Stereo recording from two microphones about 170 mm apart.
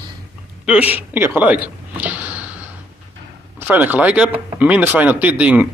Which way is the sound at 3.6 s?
10° right (ahead or behind).